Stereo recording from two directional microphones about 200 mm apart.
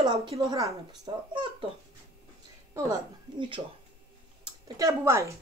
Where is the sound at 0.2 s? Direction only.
15° right (ahead or behind).